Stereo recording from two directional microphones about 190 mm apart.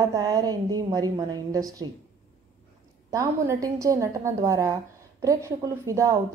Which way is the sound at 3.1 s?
15° right (ahead or behind).